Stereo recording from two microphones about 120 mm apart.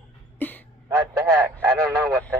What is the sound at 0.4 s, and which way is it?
Throat clearing, 15° left (ahead or behind).